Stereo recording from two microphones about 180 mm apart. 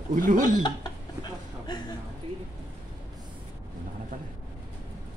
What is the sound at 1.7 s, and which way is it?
Speech, 25° left (ahead or behind).